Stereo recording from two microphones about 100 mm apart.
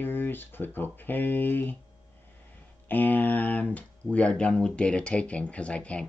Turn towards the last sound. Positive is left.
turn(degrees=10)  # may be behind; listen again after turning